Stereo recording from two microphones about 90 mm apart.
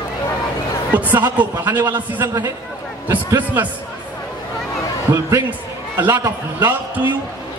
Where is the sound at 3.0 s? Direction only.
25° right (ahead or behind).